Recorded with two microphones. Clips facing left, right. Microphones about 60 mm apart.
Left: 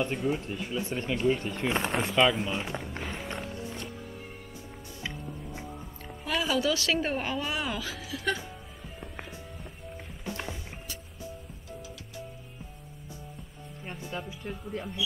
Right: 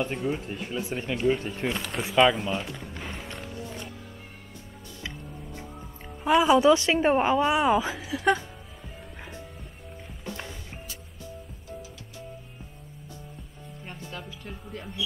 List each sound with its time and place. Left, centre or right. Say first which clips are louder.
0.0 s speech: even; centre
1.7 s speech: left 5 dB; left
2.0 s speech: right 6 dB; centre
3.0 s run: left 1 dB; centre
6.2 s speech: right 9 dB; right
10.3 s music: left 3 dB; centre
14.2 s music: left 2 dB; centre